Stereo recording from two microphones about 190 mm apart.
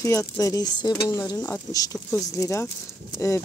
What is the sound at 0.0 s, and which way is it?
Speech, 15° left (ahead or behind).